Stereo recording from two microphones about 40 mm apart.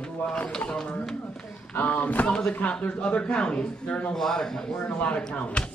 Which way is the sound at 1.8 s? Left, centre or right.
Left.